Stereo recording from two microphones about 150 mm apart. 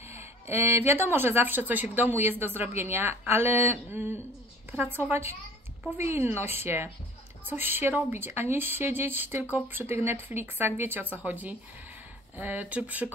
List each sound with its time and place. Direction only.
0.0 s speech: 15° right (ahead or behind)